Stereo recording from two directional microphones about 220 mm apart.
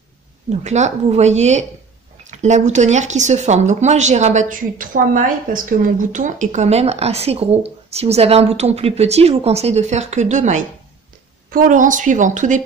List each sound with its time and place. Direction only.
0.5 s speech: 30° right (ahead or behind)